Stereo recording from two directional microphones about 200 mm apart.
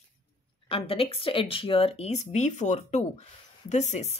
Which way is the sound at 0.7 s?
30° left (ahead or behind).